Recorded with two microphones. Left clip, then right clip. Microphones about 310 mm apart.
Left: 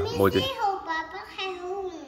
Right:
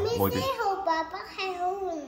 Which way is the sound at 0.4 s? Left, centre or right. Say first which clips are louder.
Left 1 dB; centre.